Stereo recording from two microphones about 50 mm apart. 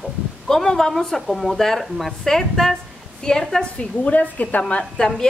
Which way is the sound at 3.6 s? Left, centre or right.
Left.